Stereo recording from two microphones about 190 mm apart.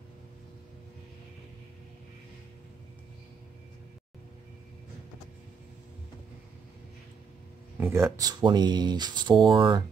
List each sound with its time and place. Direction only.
7.7 s speech: 10° right (ahead or behind)